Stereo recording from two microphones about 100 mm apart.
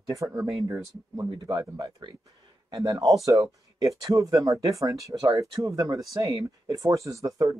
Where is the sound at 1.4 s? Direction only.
40° right (ahead or behind).